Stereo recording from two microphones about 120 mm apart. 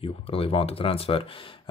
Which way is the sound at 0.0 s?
50° left (ahead or behind).